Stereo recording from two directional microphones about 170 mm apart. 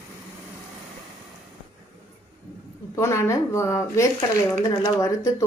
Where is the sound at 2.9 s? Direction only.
15° left (ahead or behind).